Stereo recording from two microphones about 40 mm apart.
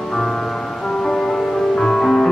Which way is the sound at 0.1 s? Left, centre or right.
Centre.